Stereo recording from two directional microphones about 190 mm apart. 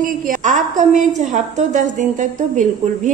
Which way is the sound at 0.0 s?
40° right (ahead or behind).